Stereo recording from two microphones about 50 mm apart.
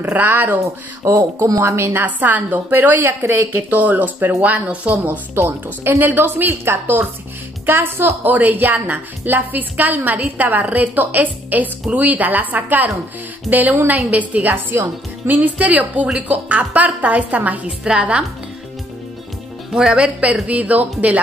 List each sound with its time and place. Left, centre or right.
0.1 s a woman's voice: right
1.0 s speech: right
2.0 s a woman's voice: right
3.7 s a woman's voice: right
5.3 s a woman's voice: right
8.2 s a woman's voice: right
14.5 s a woman's voice: right
19.7 s speech: centre
20.4 s a woman's voice: right